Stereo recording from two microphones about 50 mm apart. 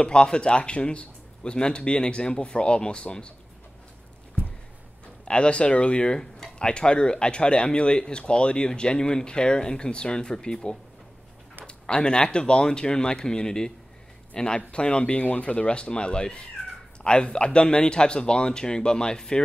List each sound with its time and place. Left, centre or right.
0.0 s a man's voice: centre
5.2 s a man's voice: left